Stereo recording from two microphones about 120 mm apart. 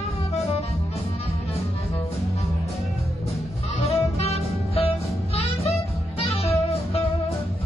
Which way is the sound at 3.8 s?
60° left (ahead or behind).